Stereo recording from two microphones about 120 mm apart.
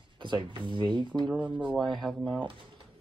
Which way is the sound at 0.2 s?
45° right (ahead or behind).